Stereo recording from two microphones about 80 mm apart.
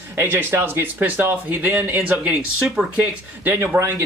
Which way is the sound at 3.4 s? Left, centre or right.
Right.